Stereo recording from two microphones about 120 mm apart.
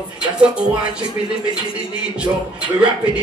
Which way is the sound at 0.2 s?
10° right (ahead or behind).